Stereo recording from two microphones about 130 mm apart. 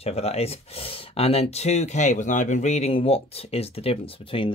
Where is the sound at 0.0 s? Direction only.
50° left (ahead or behind).